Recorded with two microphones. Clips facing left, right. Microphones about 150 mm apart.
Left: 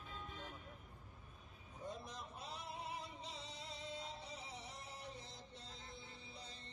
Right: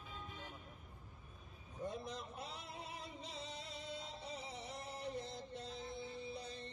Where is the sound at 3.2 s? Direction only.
60° right (ahead or behind).